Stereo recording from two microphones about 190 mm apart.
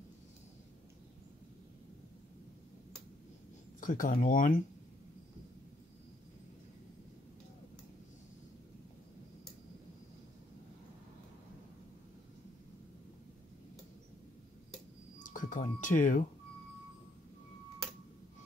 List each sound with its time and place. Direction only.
3.8 s speech: 45° left (ahead or behind)
15.2 s cash register: 45° left (ahead or behind)